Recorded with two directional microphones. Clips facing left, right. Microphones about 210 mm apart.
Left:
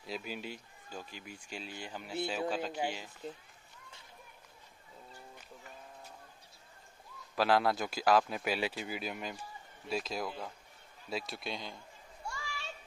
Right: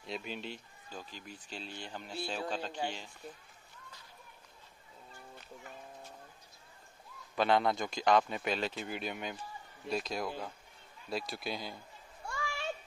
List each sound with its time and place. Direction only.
0.0 s speech: 5° left (ahead or behind)
7.3 s a man's voice: 5° left (ahead or behind)
12.3 s children playing: 55° right (ahead or behind)